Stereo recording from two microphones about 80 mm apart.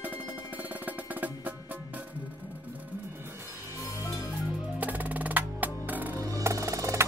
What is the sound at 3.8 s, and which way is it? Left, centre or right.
Music, left.